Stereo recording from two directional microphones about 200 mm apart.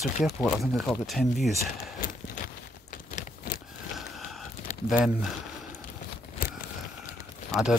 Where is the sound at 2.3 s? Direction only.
40° left (ahead or behind).